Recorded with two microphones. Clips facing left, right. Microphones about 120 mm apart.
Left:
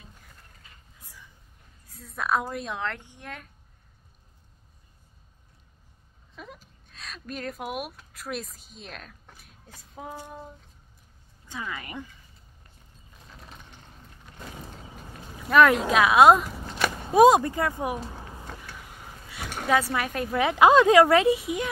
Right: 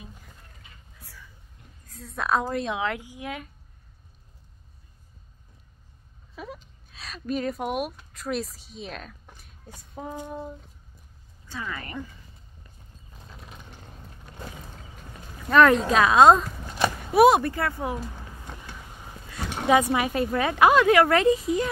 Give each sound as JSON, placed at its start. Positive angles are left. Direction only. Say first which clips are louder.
{"t": 0.9, "sound": "whispering", "louder": "right 2 dB", "side_deg": 15}
{"t": 2.0, "sound": "a woman's voice", "louder": "right 2 dB", "side_deg": 0}
{"t": 6.3, "sound": "speech", "louder": "right 5 dB", "side_deg": -5}
{"t": 11.4, "sound": "speech", "louder": "right 1 dB", "side_deg": 15}
{"t": 15.4, "sound": "a woman's voice", "louder": "right 1 dB", "side_deg": 5}
{"t": 17.0, "sound": "speech", "louder": "left 1 dB", "side_deg": 20}
{"t": 19.5, "sound": "a woman's voice", "louder": "right 4 dB", "side_deg": -20}
{"t": 20.3, "sound": "speech", "louder": "left 2 dB", "side_deg": 15}